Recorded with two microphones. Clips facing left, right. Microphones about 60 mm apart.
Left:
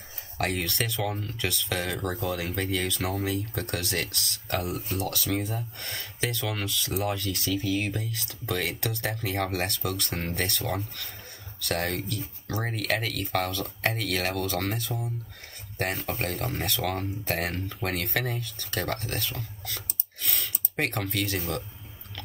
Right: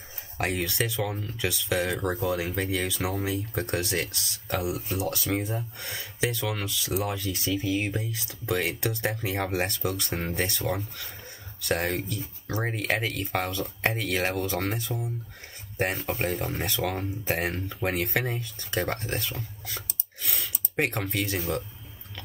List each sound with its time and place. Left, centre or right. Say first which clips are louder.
0.6 s speech: right 1 dB; centre
2.2 s speech: right 2 dB; centre
3.5 s speech: right 2 dB; right
4.5 s speech: right 1 dB; centre
4.9 s speech: even; right
5.8 s speech: right 2 dB; centre
7.2 s speech: even; right
11.6 s speech: right 2 dB; centre
16.2 s speech: right 2 dB; centre
20.2 s clicking: left 1 dB; centre
21.0 s speech: even; right